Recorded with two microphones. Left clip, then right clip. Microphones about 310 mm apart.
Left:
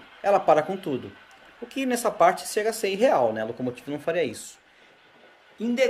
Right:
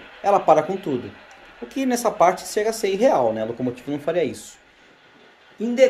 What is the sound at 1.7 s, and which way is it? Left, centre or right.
Speech, centre.